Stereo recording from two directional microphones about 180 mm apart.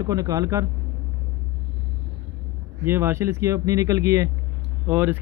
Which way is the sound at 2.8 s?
15° right (ahead or behind).